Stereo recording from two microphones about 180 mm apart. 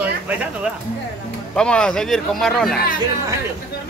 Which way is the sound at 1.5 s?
5° left (ahead or behind).